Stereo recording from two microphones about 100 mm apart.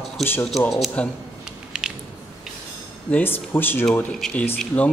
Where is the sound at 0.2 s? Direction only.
20° left (ahead or behind).